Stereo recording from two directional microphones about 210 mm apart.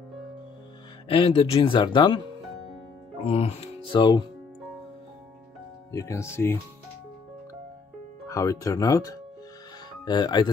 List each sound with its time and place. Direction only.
1.0 s speech: 25° left (ahead or behind)
5.9 s speech: 15° left (ahead or behind)
8.3 s speech: 15° left (ahead or behind)